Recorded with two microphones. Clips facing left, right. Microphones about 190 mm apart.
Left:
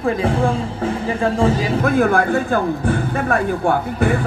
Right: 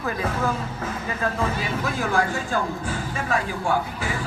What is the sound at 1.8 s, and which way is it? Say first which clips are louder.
A man's voice: left 9 dB; 55° left (ahead or behind).